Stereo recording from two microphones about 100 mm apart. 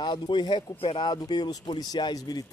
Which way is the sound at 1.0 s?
45° left (ahead or behind).